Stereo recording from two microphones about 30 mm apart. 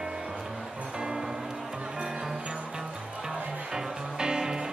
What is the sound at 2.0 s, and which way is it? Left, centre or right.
Music, right.